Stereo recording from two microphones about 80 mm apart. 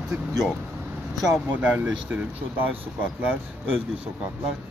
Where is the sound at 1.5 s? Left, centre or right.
Centre.